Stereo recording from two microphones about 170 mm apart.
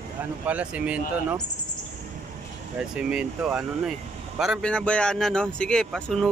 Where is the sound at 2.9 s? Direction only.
5° right (ahead or behind).